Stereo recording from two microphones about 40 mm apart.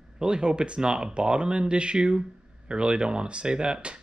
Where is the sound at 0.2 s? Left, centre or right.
Centre.